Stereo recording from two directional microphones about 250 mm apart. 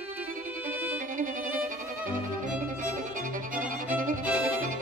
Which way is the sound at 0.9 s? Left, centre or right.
Right.